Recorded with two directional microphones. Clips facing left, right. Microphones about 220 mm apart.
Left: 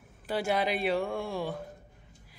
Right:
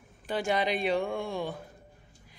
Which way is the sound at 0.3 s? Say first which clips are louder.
Even; 5° left (ahead or behind).